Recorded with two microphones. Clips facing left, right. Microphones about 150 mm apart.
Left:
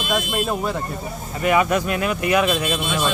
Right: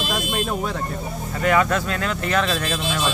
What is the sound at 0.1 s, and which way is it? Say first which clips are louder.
Speech: left 5 dB; 5° left (ahead or behind).